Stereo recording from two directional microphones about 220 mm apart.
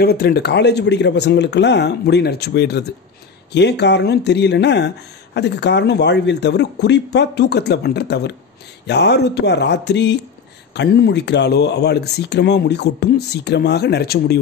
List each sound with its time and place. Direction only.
0.0 s speech: 45° left (ahead or behind)